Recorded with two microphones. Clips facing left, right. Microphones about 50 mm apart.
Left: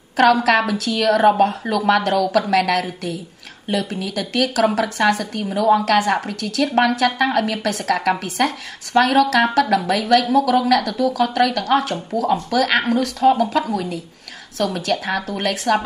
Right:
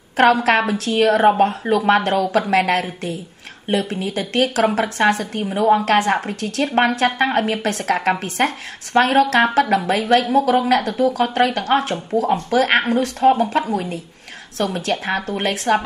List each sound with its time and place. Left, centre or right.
0.2 s a woman's voice: right